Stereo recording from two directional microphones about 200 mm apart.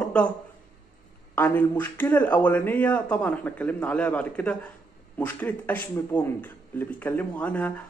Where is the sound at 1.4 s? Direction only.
10° left (ahead or behind).